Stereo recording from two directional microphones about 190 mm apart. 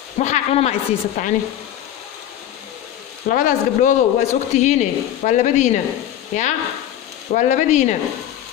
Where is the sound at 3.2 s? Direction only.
45° left (ahead or behind).